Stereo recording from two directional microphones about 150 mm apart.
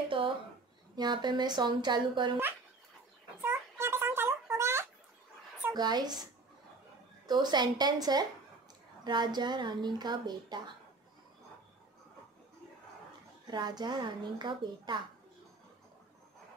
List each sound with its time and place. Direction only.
0.2 s a sound: 35° right (ahead or behind)
0.9 s speech: 30° right (ahead or behind)
3.3 s a sound: 15° right (ahead or behind)
5.7 s speech: 30° right (ahead or behind)
7.2 s speech: 30° right (ahead or behind)
13.5 s speech: 30° right (ahead or behind)